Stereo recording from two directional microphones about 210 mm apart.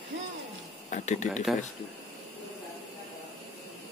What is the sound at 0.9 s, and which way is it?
Speech, 35° left (ahead or behind).